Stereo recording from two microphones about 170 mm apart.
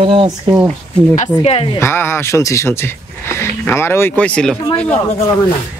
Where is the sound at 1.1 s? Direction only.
40° left (ahead or behind).